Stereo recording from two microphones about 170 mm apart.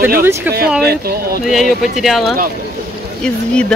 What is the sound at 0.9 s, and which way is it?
Speech, 70° right (ahead or behind).